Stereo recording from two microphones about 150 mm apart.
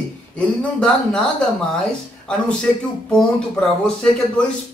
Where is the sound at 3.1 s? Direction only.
5° left (ahead or behind).